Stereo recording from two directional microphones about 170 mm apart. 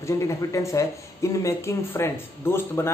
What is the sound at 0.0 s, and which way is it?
Speech, 15° left (ahead or behind).